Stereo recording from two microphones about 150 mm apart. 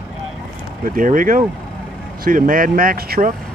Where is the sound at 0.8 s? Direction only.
65° right (ahead or behind).